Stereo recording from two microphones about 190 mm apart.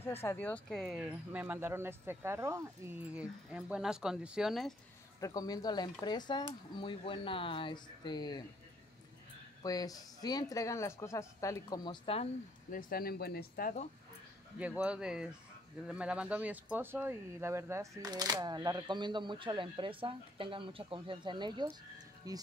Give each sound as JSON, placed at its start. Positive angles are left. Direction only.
{"t": 0.2, "sound": "speech", "side_deg": 10}
{"t": 5.2, "sound": "speech", "side_deg": 20}
{"t": 9.6, "sound": "speech", "side_deg": 20}
{"t": 12.7, "sound": "speech", "side_deg": 50}
{"t": 14.6, "sound": "speech", "side_deg": -5}